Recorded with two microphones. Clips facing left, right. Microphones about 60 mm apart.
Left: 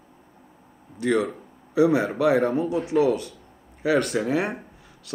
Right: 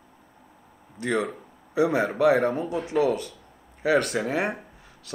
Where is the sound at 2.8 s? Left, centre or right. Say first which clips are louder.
Left 1 dB; right.